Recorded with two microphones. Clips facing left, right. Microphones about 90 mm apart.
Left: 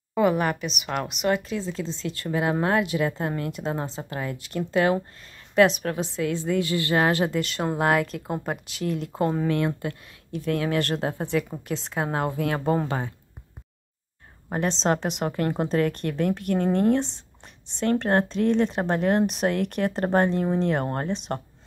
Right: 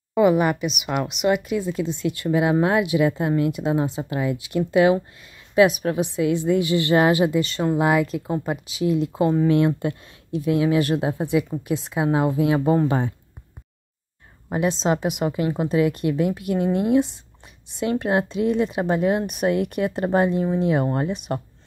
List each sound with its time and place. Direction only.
0.1 s speech: 5° right (ahead or behind)
1.3 s speech: 15° right (ahead or behind)
7.1 s speech: 10° right (ahead or behind)
9.5 s speech: 20° right (ahead or behind)
14.5 s speech: 10° right (ahead or behind)